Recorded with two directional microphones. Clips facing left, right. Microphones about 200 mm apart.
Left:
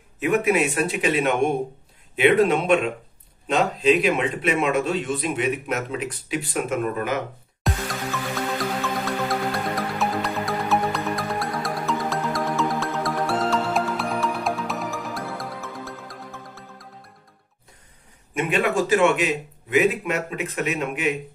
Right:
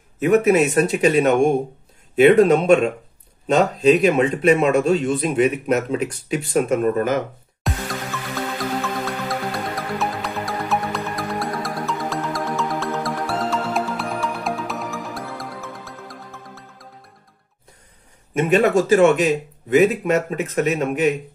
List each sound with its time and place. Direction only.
0.2 s a man's voice: 40° right (ahead or behind)
7.6 s music: centre (ahead or behind)
18.3 s a man's voice: 45° right (ahead or behind)